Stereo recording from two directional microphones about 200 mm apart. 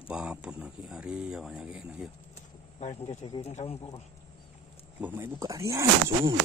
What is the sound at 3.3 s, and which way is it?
Speech, 35° left (ahead or behind).